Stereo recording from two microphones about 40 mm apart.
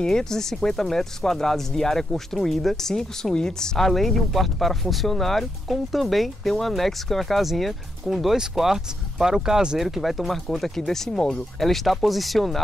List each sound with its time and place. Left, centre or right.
0.0 s speech: centre
2.9 s speech: centre
9.8 s speech: centre
11.6 s speech: centre